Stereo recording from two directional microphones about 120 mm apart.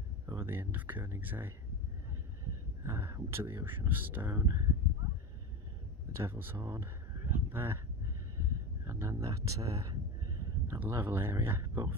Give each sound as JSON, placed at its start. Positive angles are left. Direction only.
{"t": 0.3, "sound": "speech", "side_deg": -20}
{"t": 2.8, "sound": "speech", "side_deg": -20}
{"t": 6.1, "sound": "speech", "side_deg": -20}
{"t": 8.8, "sound": "a sound", "side_deg": -25}
{"t": 10.9, "sound": "speech", "side_deg": -20}